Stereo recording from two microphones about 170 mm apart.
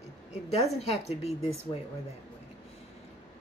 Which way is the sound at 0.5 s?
40° left (ahead or behind).